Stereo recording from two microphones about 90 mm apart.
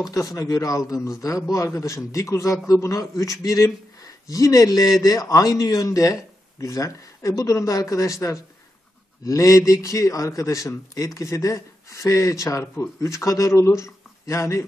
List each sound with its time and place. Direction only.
0.1 s speech: 40° left (ahead or behind)